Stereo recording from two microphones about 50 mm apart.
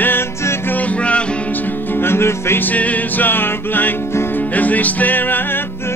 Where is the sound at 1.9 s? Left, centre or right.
Left.